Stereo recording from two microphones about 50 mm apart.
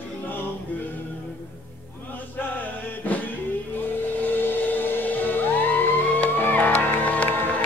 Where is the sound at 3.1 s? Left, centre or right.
Left.